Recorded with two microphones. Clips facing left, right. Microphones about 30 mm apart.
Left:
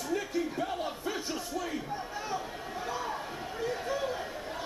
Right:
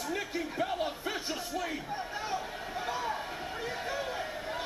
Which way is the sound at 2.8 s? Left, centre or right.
Centre.